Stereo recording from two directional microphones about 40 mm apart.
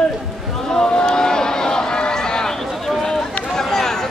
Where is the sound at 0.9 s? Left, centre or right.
Centre.